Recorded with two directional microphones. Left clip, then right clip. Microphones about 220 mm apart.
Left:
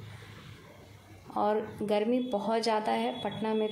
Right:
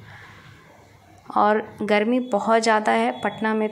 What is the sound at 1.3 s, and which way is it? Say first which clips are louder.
A woman's voice: right 10 dB; 15° right (ahead or behind).